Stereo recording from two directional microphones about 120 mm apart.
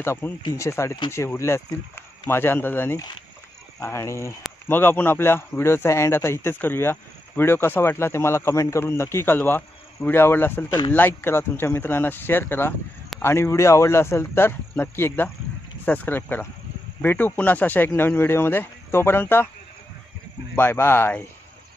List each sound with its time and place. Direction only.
0.0 s speech: 20° left (ahead or behind)
20.5 s speech: 20° left (ahead or behind)